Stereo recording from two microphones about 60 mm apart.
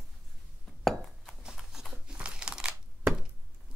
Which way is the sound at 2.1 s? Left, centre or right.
Centre.